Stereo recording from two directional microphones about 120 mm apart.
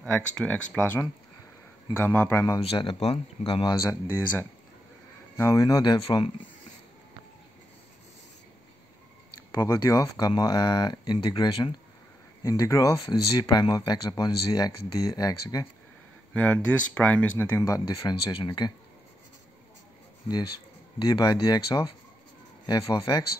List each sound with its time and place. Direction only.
0.0 s speech: 10° left (ahead or behind); by 2.6 s 25° left (ahead or behind)
2.6 s speech: 50° left (ahead or behind)
3.8 s speech: 25° left (ahead or behind)
9.5 s speech: 30° left (ahead or behind)
12.4 s speech: 30° left (ahead or behind)
16.3 s speech: 10° left (ahead or behind); by 18.7 s 40° left (ahead or behind)
20.2 s speech: 35° left (ahead or behind)